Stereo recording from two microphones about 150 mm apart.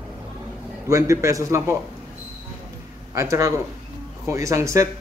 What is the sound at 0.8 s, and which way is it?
Speech, 20° right (ahead or behind).